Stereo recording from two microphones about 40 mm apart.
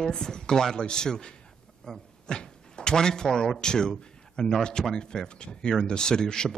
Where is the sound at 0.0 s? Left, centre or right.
Centre.